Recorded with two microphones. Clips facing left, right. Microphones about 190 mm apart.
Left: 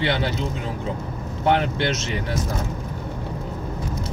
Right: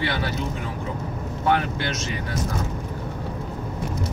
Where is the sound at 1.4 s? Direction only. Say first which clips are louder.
Left 3 dB; 25° left (ahead or behind).